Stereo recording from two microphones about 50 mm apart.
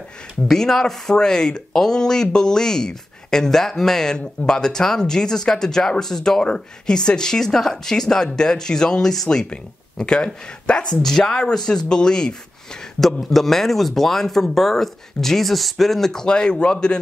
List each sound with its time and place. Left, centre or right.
0.5 s speech: centre
13.0 s speech: centre